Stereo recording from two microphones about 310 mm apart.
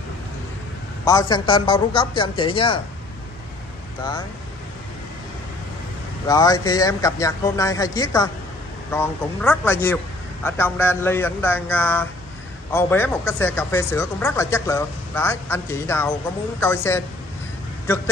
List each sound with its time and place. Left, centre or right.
1.0 s speech: centre
6.2 s a man's voice: centre